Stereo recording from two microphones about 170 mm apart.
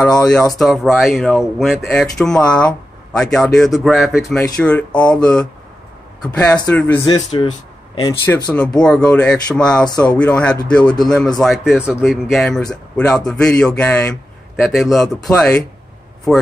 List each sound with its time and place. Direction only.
0.3 s speech: centre (ahead or behind)
7.1 s speech: 30° left (ahead or behind)
8.1 s a man's voice: 15° left (ahead or behind)